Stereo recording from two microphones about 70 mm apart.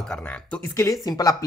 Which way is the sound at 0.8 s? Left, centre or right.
Left.